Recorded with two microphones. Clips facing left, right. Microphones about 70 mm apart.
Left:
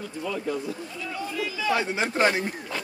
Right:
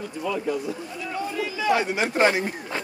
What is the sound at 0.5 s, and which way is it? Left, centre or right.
Speech, right.